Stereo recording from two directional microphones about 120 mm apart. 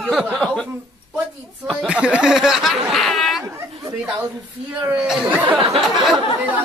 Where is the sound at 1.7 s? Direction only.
10° right (ahead or behind).